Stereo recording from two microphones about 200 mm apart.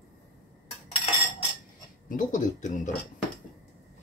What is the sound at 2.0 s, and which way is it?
Speech, 40° left (ahead or behind).